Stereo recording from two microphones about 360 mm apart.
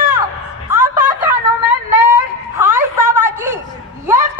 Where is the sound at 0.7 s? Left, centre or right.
Centre.